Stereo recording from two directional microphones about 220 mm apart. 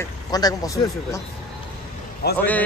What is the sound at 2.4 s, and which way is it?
Speech, 5° left (ahead or behind).